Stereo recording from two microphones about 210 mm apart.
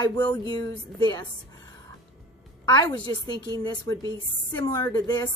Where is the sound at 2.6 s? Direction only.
20° left (ahead or behind).